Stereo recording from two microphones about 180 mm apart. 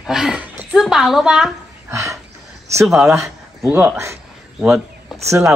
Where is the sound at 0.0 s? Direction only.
5° right (ahead or behind).